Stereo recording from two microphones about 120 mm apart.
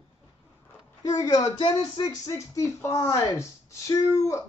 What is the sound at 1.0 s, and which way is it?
Music, 30° left (ahead or behind).